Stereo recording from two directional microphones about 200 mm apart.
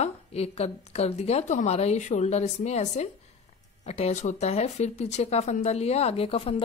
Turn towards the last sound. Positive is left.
turn(degrees=30)  # may be behind; listen again after turning